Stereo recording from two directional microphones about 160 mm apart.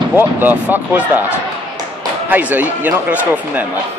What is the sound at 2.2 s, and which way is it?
Speech, 10° right (ahead or behind).